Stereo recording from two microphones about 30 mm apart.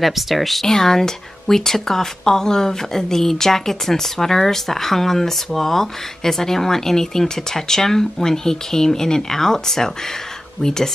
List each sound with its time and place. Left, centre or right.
0.0 s speech: centre
0.7 s speech: centre